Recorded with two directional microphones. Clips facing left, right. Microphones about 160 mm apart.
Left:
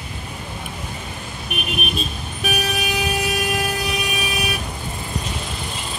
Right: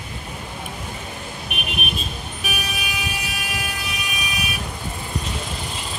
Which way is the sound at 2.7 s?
45° left (ahead or behind).